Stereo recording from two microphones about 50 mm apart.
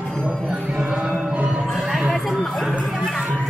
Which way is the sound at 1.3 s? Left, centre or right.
Right.